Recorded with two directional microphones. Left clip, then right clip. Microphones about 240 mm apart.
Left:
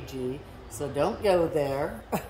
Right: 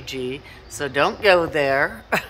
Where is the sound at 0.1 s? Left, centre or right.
Centre.